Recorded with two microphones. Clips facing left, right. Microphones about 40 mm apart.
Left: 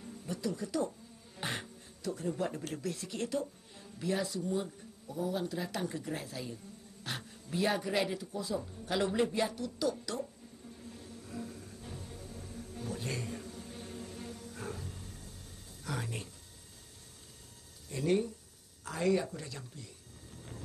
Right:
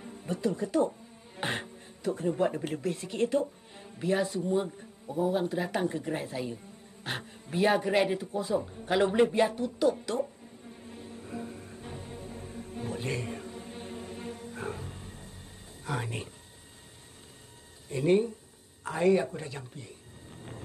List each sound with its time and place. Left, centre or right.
0.0 s speech: right
10.7 s music: right
15.8 s speech: right
17.8 s speech: right